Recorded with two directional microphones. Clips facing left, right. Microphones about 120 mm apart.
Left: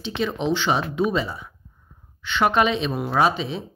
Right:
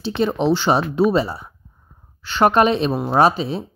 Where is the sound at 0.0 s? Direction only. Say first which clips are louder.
Right 6 dB; 35° right (ahead or behind).